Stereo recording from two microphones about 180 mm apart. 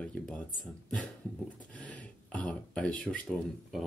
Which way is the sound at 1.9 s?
5° left (ahead or behind).